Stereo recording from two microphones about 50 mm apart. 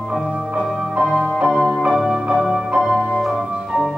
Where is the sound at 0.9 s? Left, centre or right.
Centre.